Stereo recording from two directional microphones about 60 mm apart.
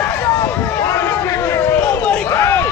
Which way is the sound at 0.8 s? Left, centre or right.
Left.